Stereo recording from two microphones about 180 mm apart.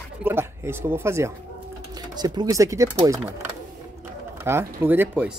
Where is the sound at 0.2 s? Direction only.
15° right (ahead or behind).